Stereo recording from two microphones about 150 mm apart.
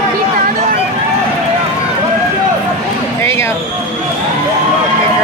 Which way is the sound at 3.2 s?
15° left (ahead or behind).